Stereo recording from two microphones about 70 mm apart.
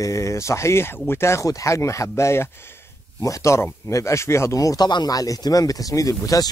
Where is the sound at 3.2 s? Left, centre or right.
Left.